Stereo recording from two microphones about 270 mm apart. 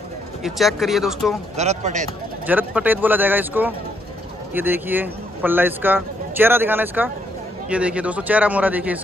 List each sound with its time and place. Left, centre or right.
0.4 s speech: centre
1.6 s speech: right
2.4 s a man's voice: centre